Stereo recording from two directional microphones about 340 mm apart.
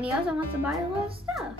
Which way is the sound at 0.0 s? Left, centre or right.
Centre.